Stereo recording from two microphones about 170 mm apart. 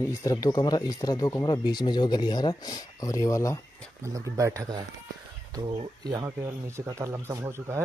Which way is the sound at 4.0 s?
20° right (ahead or behind).